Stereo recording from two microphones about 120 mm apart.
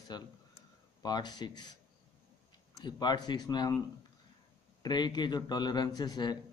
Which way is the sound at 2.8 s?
35° left (ahead or behind).